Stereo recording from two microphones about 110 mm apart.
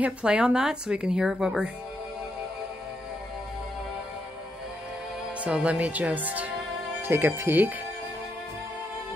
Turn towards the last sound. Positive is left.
turn(degrees=-20)  # may be behind; listen again after turning